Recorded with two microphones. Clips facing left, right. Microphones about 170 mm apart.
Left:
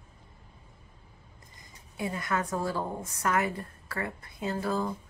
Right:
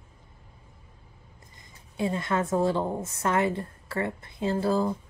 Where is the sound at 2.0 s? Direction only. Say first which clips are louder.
Right 4 dB; 25° right (ahead or behind).